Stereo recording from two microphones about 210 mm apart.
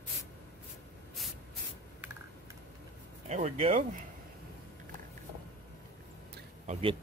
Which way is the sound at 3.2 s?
30° right (ahead or behind).